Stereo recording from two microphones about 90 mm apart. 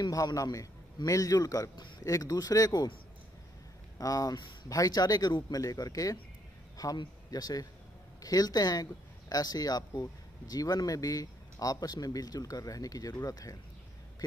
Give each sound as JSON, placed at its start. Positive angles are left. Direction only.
{"t": 0.0, "sound": "speech", "side_deg": 45}
{"t": 4.0, "sound": "speech", "side_deg": 40}